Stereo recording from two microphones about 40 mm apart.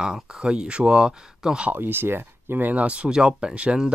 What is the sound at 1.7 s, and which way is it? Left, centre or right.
Speech, right.